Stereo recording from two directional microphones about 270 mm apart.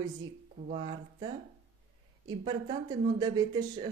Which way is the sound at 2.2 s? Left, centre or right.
Centre.